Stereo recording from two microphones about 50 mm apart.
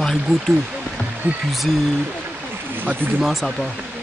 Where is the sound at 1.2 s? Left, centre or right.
Right.